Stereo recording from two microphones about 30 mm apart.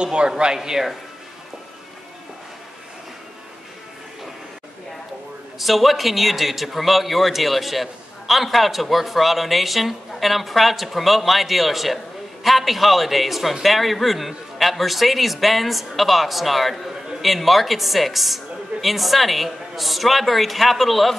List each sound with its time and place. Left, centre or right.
0.0 s speech: right
0.6 s speech: centre
5.6 s a man's voice: centre